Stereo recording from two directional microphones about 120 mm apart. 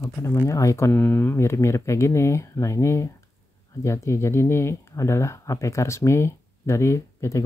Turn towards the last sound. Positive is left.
turn(degrees=25)  # may be behind; listen again after turning